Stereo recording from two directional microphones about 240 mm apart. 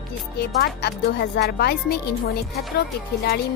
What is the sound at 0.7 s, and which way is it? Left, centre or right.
Speech, left.